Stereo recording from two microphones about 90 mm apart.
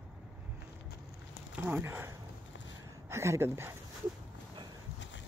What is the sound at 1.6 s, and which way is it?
Speech, 25° right (ahead or behind).